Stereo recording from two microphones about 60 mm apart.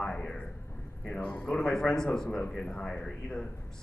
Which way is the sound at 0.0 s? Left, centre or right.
Centre.